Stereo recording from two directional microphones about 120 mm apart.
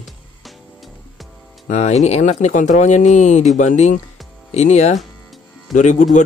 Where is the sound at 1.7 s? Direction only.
70° left (ahead or behind).